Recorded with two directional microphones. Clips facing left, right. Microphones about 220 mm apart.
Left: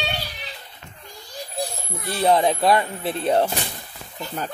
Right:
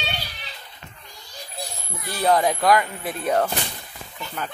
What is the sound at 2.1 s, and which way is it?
A child's voice, 25° left (ahead or behind).